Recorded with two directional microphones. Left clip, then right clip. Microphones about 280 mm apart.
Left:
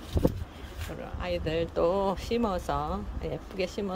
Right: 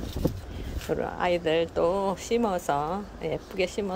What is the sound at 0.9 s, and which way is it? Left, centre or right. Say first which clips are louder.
Speech: right 13 dB; right.